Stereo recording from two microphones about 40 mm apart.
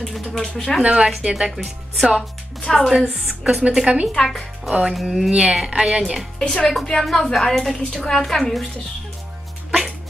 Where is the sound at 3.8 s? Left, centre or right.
Right.